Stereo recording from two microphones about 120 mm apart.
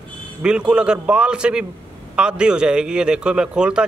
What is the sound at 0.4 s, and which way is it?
A man's voice, 10° right (ahead or behind).